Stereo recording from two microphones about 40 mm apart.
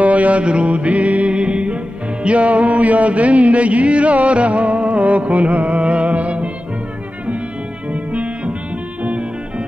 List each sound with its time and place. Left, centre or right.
0.0 s mantra: right
1.3 s music: right
7.9 s music: right